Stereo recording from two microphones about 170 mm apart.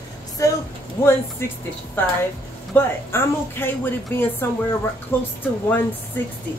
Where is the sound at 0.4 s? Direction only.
20° left (ahead or behind).